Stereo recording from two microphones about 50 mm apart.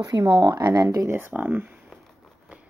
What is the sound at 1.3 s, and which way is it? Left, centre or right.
Speech, right.